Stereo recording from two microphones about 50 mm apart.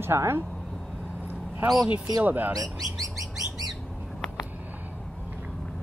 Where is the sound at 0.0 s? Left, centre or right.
Right.